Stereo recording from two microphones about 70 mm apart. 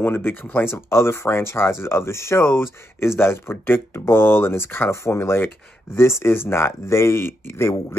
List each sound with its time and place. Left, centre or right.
0.0 s speech: left